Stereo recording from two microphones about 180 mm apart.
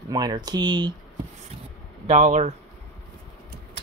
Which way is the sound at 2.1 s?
40° right (ahead or behind).